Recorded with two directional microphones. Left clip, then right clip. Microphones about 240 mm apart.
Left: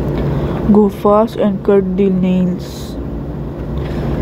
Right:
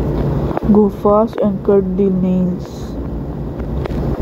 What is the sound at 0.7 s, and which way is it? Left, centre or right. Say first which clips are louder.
Speech: left 1 dB; left.